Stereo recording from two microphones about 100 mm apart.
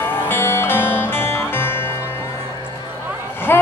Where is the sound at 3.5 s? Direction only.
20° left (ahead or behind).